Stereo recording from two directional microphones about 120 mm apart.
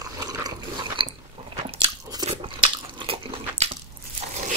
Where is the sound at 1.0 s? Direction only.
45° right (ahead or behind).